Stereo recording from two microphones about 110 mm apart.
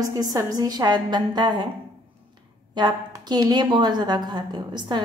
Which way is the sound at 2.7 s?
40° right (ahead or behind).